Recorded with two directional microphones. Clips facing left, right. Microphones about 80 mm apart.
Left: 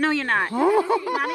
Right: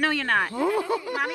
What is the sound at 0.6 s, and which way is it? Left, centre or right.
Speech, left.